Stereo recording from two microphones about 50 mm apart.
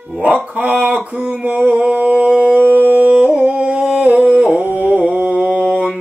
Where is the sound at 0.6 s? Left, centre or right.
Right.